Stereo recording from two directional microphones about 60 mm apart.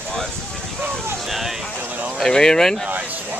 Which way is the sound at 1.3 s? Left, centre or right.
Centre.